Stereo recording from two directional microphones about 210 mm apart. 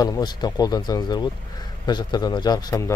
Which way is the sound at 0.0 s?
20° left (ahead or behind).